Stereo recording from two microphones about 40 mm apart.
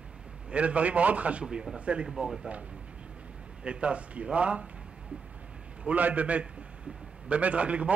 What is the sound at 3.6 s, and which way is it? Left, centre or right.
A man's voice, right.